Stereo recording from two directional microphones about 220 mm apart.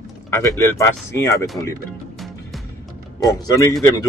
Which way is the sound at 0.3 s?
10° left (ahead or behind).